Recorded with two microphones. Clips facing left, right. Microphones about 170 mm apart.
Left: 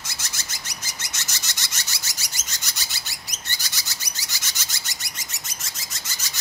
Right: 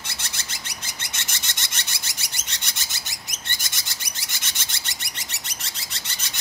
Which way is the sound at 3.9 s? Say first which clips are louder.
Even; 55° right (ahead or behind).